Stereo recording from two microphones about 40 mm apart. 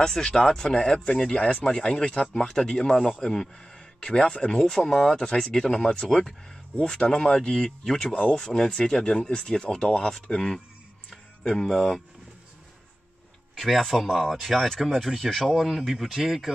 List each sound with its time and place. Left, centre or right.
0.0 s speech: centre
4.6 s speech: centre
13.6 s speech: centre